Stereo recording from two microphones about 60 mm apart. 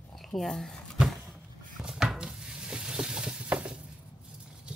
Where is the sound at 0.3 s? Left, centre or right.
Centre.